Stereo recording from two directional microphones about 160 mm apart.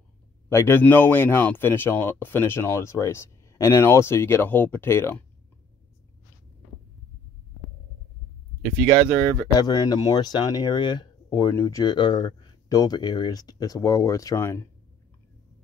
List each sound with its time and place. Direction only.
0.5 s speech: 15° left (ahead or behind)
8.8 s speech: 15° left (ahead or behind)
9.6 s speech: 25° left (ahead or behind)